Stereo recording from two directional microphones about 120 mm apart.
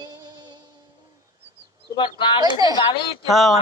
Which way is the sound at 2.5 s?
30° right (ahead or behind).